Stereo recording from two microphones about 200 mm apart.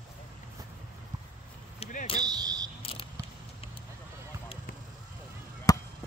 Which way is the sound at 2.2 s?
20° right (ahead or behind).